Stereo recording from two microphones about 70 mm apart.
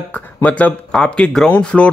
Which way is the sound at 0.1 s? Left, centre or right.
Centre.